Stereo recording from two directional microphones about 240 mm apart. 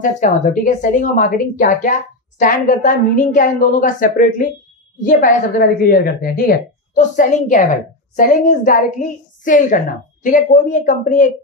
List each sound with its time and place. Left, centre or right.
0.0 s a woman's voice: left